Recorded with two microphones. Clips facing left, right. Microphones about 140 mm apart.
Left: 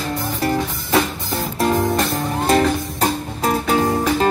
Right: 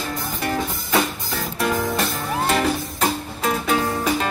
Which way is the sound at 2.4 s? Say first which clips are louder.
Left 4 dB; 35° left (ahead or behind).